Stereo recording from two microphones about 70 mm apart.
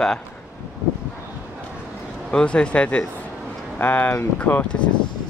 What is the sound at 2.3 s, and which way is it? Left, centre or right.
Speech, centre.